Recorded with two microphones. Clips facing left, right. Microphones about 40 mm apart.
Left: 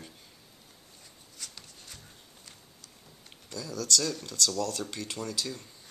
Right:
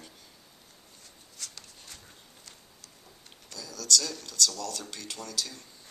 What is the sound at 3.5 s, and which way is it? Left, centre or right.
Speech, centre.